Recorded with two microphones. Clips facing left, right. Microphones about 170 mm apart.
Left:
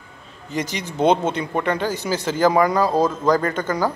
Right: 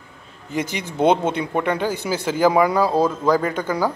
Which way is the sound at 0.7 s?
55° right (ahead or behind).